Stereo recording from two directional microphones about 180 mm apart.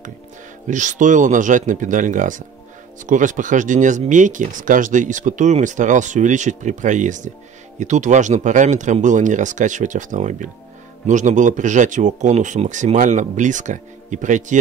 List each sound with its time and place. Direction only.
0.7 s speech: 45° right (ahead or behind)